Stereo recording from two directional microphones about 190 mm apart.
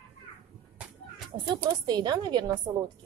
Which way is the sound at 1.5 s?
25° right (ahead or behind).